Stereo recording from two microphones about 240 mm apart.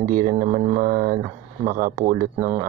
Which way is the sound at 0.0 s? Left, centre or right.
Right.